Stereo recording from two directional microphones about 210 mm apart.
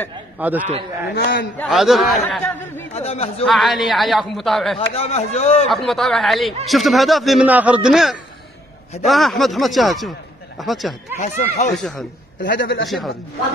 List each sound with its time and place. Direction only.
0.4 s a man's voice: 10° right (ahead or behind)
1.1 s a man's voice: 45° left (ahead or behind)
1.6 s speech: centre (ahead or behind)
2.9 s speech: 30° left (ahead or behind)
3.4 s speech: centre (ahead or behind)
4.7 s speech: 30° left (ahead or behind)
5.7 s speech: centre (ahead or behind)
11.1 s speech: 35° left (ahead or behind)
11.7 s speech: centre (ahead or behind)
12.4 s a man's voice: 60° left (ahead or behind)
12.8 s speech: centre (ahead or behind)